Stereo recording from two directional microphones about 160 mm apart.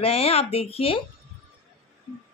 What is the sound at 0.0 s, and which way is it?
A woman's voice, 40° left (ahead or behind).